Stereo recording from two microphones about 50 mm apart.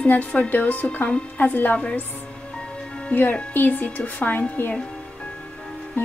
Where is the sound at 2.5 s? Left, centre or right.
Left.